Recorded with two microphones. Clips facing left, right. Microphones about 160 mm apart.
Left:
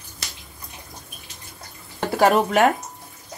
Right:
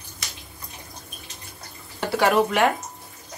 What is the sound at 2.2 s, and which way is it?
Speech, 40° left (ahead or behind).